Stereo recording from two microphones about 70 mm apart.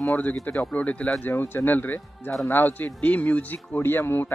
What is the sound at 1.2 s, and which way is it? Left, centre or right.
Speech, left.